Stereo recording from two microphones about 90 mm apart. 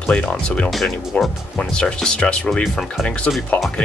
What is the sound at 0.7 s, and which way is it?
Speech, centre (ahead or behind).